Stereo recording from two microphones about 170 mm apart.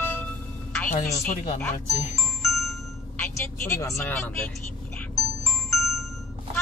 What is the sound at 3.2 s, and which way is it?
Speech, 15° left (ahead or behind).